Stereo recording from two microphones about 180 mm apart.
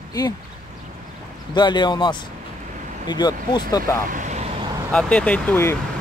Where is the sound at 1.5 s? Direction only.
25° left (ahead or behind).